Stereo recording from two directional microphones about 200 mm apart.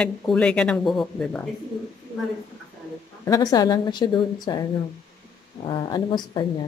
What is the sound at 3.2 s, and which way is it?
A woman's voice, 15° left (ahead or behind).